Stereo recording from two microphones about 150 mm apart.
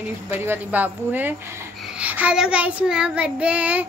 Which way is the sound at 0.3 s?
15° right (ahead or behind).